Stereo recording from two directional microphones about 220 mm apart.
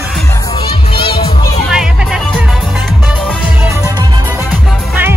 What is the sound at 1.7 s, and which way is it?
Music, 5° right (ahead or behind).